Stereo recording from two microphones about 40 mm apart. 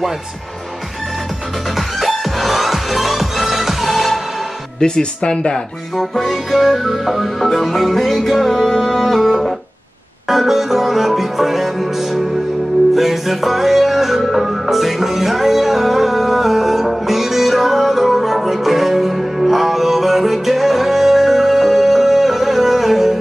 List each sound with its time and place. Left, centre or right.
1.8 s music: centre
4.7 s speech: centre
5.9 s music: centre